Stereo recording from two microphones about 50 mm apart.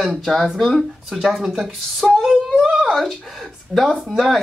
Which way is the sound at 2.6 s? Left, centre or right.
Centre.